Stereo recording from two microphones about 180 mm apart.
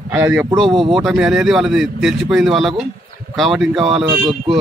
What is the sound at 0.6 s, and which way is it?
Speech, 30° right (ahead or behind).